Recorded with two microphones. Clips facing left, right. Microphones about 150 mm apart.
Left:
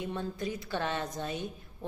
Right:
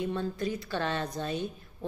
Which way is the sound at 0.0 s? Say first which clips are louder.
Right 4 dB; 15° left (ahead or behind).